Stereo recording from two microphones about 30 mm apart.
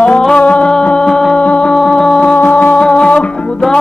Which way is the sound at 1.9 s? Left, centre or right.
Left.